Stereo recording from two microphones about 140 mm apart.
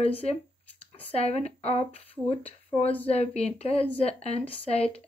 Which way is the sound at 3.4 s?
45° left (ahead or behind).